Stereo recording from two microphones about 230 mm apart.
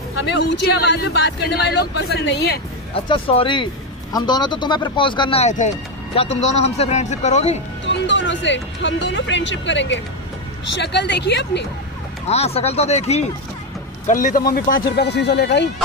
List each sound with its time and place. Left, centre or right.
0.2 s speech: left
2.9 s speech: left
7.8 s speech: left
12.3 s speech: left